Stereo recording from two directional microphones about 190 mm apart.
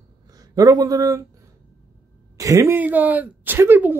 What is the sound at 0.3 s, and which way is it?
Speech, 20° right (ahead or behind).